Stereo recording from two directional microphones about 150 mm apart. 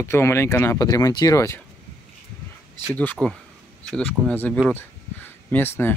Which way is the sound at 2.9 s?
10° left (ahead or behind).